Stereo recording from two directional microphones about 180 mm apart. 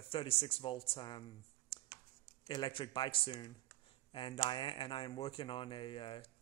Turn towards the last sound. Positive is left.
turn(degrees=30)  # may be behind; listen again after turning